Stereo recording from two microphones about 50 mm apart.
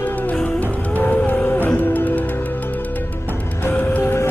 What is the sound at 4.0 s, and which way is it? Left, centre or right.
Music, left.